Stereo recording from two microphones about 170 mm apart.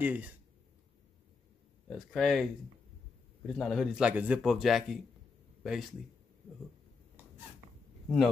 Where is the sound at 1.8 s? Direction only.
Centre (ahead or behind).